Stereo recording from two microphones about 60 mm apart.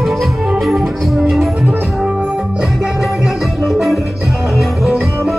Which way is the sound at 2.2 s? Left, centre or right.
Centre.